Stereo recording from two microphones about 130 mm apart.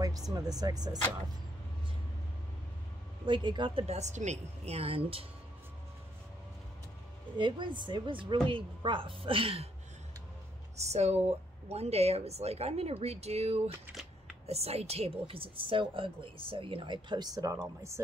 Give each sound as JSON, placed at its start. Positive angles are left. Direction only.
{"t": 0.3, "sound": "speech", "side_deg": -30}
{"t": 3.3, "sound": "a woman's voice", "side_deg": -35}
{"t": 3.8, "sound": "a woman's voice", "side_deg": -60}
{"t": 7.3, "sound": "a woman's voice", "side_deg": -35}
{"t": 10.8, "sound": "a woman's voice", "side_deg": -55}